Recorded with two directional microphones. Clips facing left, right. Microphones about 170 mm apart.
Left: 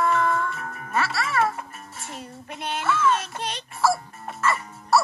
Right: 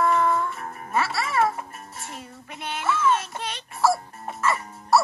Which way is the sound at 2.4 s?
35° left (ahead or behind).